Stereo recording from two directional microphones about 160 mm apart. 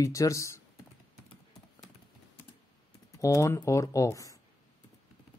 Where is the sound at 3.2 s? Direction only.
20° left (ahead or behind).